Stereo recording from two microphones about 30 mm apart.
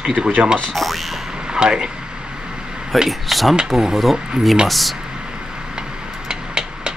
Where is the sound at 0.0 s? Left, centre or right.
Centre.